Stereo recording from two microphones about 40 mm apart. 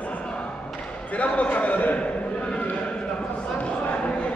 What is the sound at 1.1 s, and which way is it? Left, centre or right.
Speech, left.